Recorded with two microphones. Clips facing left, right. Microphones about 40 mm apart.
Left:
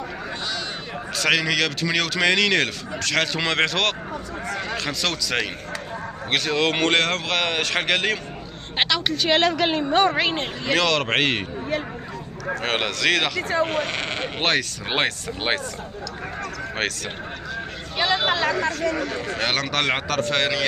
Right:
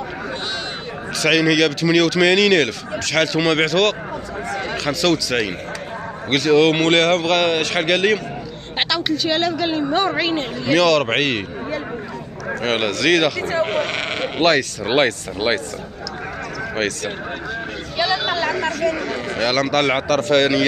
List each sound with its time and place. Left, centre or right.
1.1 s a man's voice: centre
9.6 s a woman's voice: left
10.7 s speech: centre
12.4 s a man's voice: centre
13.7 s speech: right
14.4 s speech: centre
16.7 s speech: centre
18.0 s chatter: left
19.0 s speech: right
19.4 s a man's voice: centre